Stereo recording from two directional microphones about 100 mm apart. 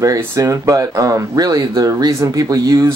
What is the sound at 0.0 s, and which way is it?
Speech, 35° right (ahead or behind).